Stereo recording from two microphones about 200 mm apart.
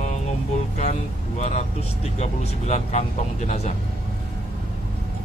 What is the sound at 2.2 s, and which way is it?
Speech, 35° left (ahead or behind).